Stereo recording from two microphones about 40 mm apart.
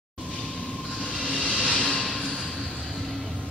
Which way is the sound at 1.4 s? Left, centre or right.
Left.